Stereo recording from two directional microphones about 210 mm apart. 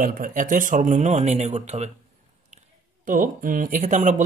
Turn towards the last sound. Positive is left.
turn(degrees=-35)  # may be behind; listen again after turning